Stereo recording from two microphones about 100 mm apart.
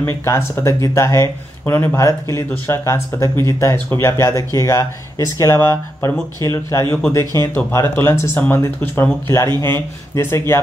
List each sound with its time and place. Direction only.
0.0 s speech: 25° left (ahead or behind)